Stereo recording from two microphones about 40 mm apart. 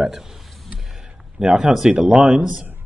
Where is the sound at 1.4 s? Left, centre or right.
Right.